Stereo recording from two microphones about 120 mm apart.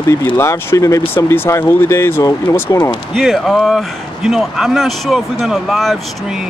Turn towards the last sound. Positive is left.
turn(degrees=-5)  # may be behind; listen again after turning